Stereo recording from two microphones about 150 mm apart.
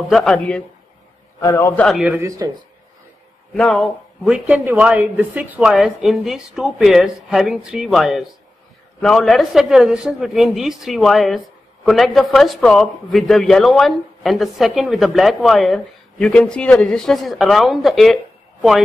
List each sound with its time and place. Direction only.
0.1 s a man's voice: 5° left (ahead or behind)
1.4 s a man's voice: 20° left (ahead or behind)
2.0 s speech: 10° right (ahead or behind)
2.2 s speech: 20° right (ahead or behind)
3.5 s a man's voice: centre (ahead or behind)